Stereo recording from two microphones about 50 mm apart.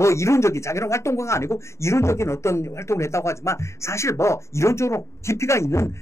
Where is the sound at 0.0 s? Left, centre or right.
Left.